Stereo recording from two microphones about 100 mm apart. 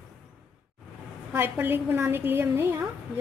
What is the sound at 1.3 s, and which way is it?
A woman's voice, 20° right (ahead or behind).